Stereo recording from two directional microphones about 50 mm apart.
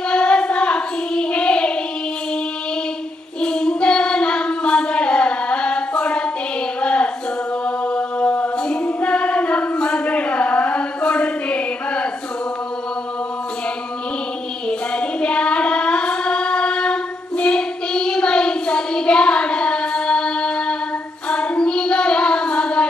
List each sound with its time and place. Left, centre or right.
0.1 s child singing: left
3.3 s child singing: centre
7.6 s music: left
14.7 s child singing: left